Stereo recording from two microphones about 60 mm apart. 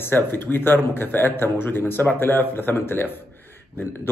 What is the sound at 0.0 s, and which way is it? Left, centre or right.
A man's voice, left.